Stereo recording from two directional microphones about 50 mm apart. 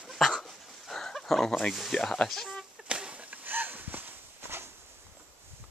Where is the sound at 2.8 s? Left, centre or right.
Right.